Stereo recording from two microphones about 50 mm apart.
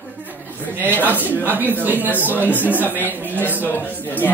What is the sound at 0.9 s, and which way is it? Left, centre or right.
Speech, left.